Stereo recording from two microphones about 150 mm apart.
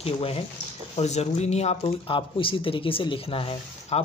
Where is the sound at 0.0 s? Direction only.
40° left (ahead or behind).